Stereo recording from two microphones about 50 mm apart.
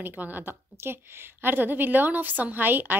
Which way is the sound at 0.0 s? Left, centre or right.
Right.